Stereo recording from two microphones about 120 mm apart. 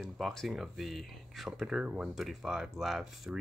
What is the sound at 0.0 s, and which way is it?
Speech, 5° left (ahead or behind).